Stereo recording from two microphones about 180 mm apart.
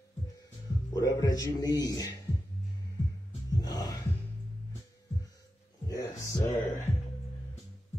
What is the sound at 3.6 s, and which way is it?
Music, 20° left (ahead or behind).